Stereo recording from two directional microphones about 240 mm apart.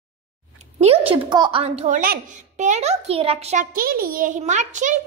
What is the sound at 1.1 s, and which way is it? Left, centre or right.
A child's voice, centre.